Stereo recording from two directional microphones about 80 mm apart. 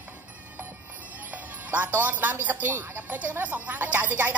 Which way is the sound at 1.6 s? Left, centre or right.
Right.